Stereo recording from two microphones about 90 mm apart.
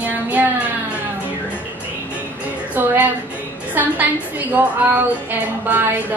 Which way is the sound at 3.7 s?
20° right (ahead or behind).